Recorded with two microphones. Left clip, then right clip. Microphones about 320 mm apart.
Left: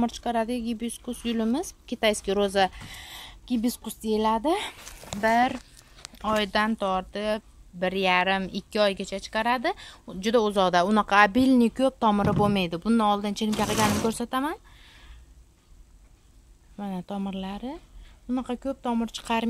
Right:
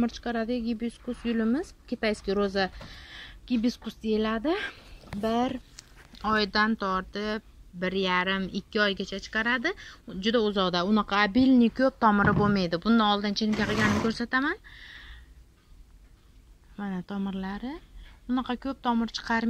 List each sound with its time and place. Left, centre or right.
0.0 s a woman's voice: centre
14.1 s a sound: centre
16.7 s a woman's voice: centre